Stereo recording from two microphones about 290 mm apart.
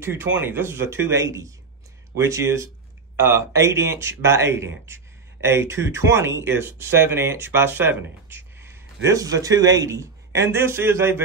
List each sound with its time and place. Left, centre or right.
0.0 s speech: centre